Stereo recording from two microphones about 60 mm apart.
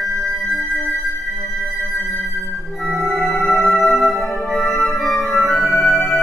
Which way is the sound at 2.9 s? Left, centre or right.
Centre.